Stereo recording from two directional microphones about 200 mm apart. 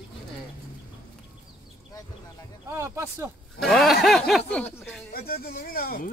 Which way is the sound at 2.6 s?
15° right (ahead or behind).